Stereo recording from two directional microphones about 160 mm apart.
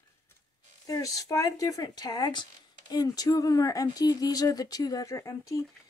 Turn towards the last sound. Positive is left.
turn(degrees=20)  # may be behind; listen again after turning